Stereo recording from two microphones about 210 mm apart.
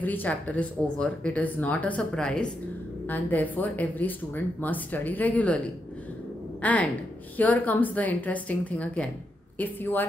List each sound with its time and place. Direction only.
0.0 s a woman's voice: 10° left (ahead or behind)
6.6 s a woman's voice: 5° left (ahead or behind)